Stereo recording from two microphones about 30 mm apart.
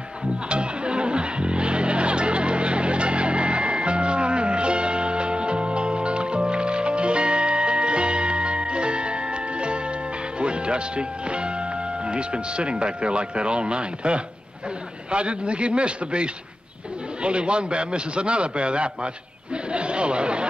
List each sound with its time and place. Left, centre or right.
0.5 s music: right
12.1 s speech: right